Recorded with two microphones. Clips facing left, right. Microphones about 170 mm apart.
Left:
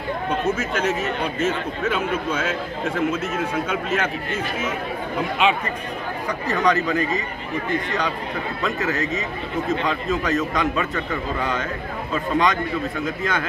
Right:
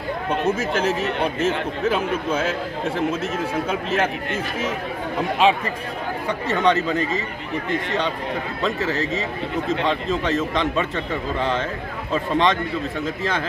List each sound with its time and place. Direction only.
0.6 s speech: 30° right (ahead or behind)
3.6 s speech: 30° right (ahead or behind)
5.4 s a man's voice: 35° right (ahead or behind)
8.6 s a man's voice: 30° right (ahead or behind)